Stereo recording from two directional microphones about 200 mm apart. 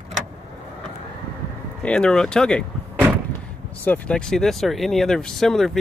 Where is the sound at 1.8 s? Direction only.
5° left (ahead or behind).